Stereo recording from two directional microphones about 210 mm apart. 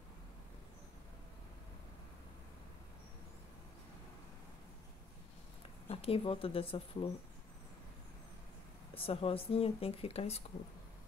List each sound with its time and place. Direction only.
5.9 s speech: 30° left (ahead or behind)
8.9 s speech: 25° left (ahead or behind)